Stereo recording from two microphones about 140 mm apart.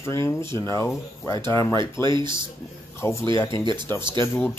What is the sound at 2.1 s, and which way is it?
Speech, 35° right (ahead or behind).